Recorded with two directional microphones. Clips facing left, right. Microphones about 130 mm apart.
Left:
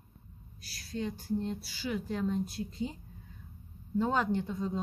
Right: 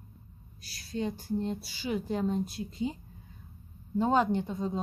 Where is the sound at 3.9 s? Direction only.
20° right (ahead or behind).